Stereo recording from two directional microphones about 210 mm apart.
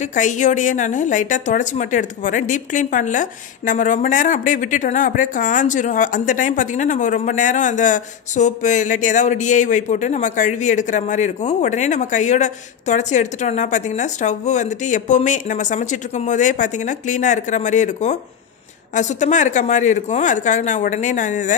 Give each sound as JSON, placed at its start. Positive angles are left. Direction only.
{"t": 0.1, "sound": "a woman's voice", "side_deg": 35}